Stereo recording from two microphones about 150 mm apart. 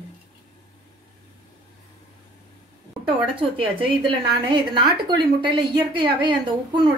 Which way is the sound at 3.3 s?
35° right (ahead or behind).